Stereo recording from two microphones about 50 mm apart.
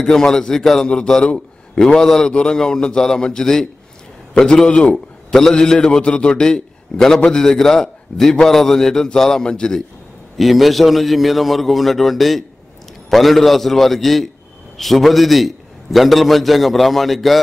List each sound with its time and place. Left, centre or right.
0.0 s a man's voice: centre
10.3 s a man's voice: centre